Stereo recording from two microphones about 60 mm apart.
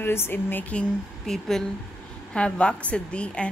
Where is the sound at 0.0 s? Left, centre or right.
Left.